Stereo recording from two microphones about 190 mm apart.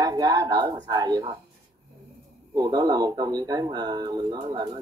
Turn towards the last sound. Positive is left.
turn(degrees=-20)  # may be behind; listen again after turning